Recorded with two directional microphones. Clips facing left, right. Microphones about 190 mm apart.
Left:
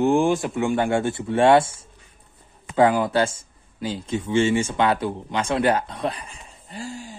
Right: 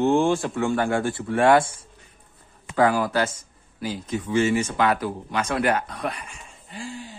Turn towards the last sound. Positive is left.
turn(degrees=45)  # may be behind; listen again after turning